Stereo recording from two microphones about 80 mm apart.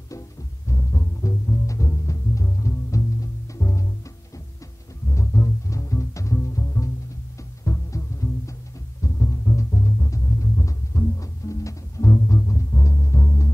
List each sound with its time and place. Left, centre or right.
0.7 s music: left
5.1 s music: left